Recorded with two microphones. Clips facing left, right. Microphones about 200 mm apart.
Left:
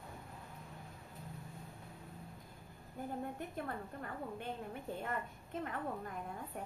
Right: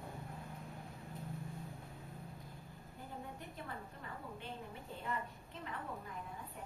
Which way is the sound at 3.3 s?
50° left (ahead or behind).